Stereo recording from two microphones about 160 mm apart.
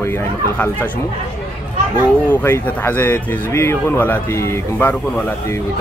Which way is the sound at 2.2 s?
15° left (ahead or behind).